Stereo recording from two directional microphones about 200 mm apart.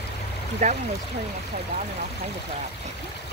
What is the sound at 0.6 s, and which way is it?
Speech, 35° right (ahead or behind).